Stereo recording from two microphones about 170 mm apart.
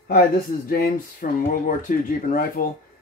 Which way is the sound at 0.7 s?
55° left (ahead or behind).